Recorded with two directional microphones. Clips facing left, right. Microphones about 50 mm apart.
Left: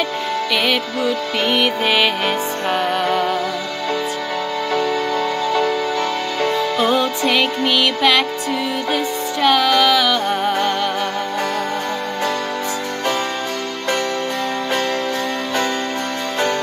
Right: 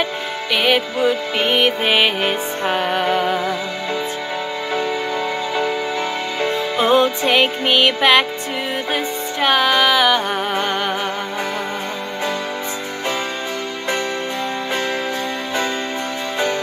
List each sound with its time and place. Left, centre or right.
0.0 s music: centre
6.4 s music: right